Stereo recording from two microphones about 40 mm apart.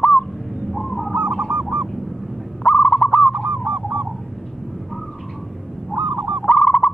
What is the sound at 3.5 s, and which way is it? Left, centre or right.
Goose, right.